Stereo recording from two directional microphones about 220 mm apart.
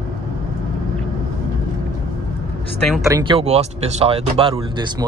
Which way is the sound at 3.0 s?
20° right (ahead or behind).